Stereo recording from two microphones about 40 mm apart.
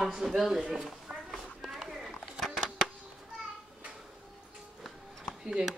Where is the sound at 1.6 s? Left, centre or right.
Centre.